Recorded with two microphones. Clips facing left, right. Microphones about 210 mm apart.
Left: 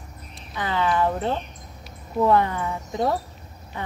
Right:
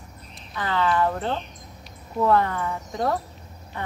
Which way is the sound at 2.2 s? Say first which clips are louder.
Left 1 dB; 15° left (ahead or behind).